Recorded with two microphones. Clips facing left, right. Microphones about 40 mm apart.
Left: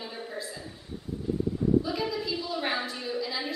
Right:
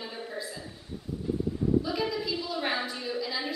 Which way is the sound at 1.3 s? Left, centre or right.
Centre.